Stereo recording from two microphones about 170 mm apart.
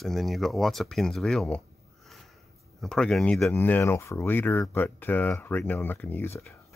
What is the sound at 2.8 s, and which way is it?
Speech, 5° left (ahead or behind).